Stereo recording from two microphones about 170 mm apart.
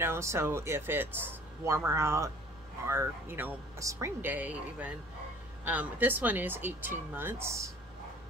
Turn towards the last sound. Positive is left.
turn(degrees=-15)  # may be behind; listen again after turning